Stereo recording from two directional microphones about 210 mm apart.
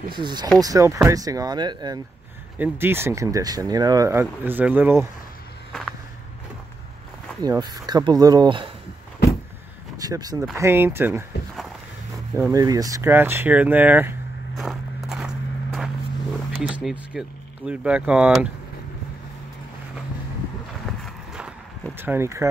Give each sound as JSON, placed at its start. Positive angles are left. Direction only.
{"t": 0.1, "sound": "speech", "side_deg": -20}
{"t": 5.7, "sound": "walk", "side_deg": 0}
{"t": 7.4, "sound": "speech", "side_deg": -20}
{"t": 9.9, "sound": "a sound", "side_deg": -15}
{"t": 10.5, "sound": "speech", "side_deg": -10}
{"t": 12.4, "sound": "speech", "side_deg": -15}
{"t": 14.6, "sound": "walk", "side_deg": 0}
{"t": 16.5, "sound": "speech", "side_deg": -5}
{"t": 21.0, "sound": "a sound", "side_deg": -5}
{"t": 21.9, "sound": "speech", "side_deg": -10}